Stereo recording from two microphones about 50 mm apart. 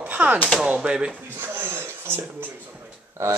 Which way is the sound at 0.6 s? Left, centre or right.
Centre.